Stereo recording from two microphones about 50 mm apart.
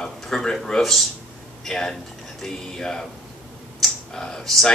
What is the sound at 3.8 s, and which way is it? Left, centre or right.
Computer keyboard, centre.